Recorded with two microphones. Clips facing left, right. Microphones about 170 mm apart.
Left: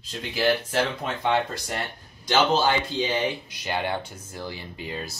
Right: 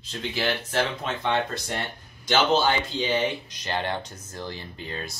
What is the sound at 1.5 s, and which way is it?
Speech, 5° left (ahead or behind).